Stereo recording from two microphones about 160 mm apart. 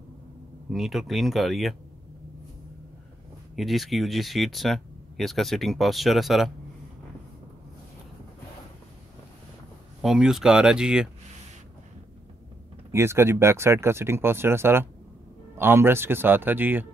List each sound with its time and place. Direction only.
0.7 s speech: centre (ahead or behind)
3.5 s speech: centre (ahead or behind)
10.0 s speech: 5° right (ahead or behind)
12.9 s speech: 15° right (ahead or behind)